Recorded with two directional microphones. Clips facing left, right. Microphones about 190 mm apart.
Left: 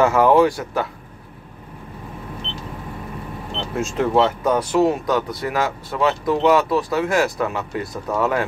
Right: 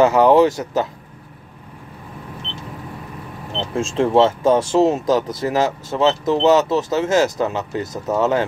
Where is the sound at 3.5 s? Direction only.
25° right (ahead or behind).